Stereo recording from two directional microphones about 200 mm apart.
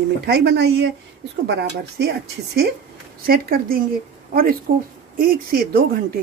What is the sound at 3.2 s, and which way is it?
Speech, 45° right (ahead or behind).